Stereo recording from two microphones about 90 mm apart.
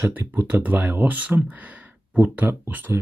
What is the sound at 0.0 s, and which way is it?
Speech, 25° right (ahead or behind).